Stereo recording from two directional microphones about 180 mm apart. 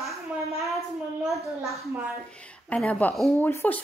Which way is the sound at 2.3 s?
5° left (ahead or behind).